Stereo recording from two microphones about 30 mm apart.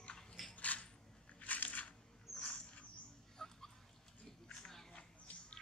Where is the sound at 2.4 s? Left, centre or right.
Left.